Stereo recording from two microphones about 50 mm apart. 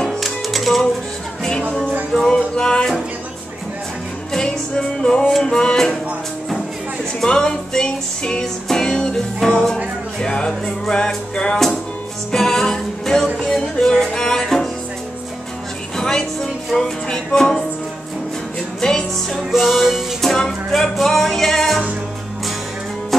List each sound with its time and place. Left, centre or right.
0.0 s music: centre
2.1 s music: centre
4.3 s music: centre
7.2 s music: centre
16.0 s music: centre
18.8 s music: centre
19.5 s music: centre